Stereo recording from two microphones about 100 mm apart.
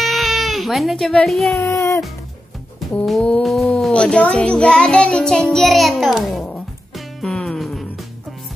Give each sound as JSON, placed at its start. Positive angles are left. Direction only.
{"t": 0.0, "sound": "baby cry", "side_deg": 0}
{"t": 1.2, "sound": "speech", "side_deg": 0}
{"t": 1.6, "sound": "music", "side_deg": 30}
{"t": 3.1, "sound": "music", "side_deg": 10}
{"t": 3.4, "sound": "child singing", "side_deg": 5}
{"t": 7.2, "sound": "music", "side_deg": 5}